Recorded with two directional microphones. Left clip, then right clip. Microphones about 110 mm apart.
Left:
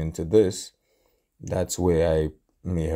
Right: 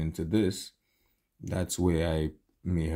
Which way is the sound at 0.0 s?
40° left (ahead or behind).